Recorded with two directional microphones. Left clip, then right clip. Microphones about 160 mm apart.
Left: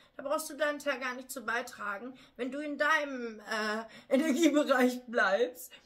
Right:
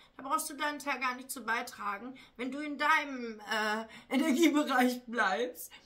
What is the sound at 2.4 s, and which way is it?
A woman's voice, 20° right (ahead or behind).